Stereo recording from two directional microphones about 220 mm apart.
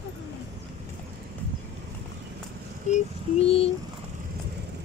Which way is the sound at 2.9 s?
25° left (ahead or behind).